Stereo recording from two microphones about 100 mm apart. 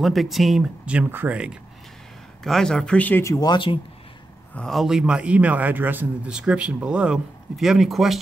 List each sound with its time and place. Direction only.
0.0 s speech: centre (ahead or behind)
0.8 s speech: 15° right (ahead or behind)
2.4 s speech: 5° left (ahead or behind)
3.3 s speech: 40° left (ahead or behind)
4.6 s speech: centre (ahead or behind)